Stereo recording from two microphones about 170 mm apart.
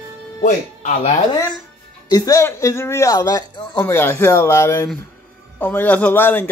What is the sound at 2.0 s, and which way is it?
Speech, 20° left (ahead or behind).